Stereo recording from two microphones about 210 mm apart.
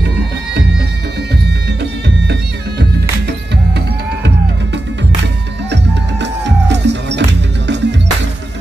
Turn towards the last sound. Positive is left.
turn(degrees=-55)  # may be behind; listen again after turning